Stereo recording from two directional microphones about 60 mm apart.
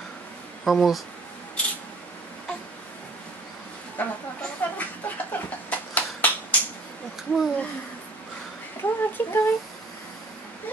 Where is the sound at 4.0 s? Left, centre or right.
Left.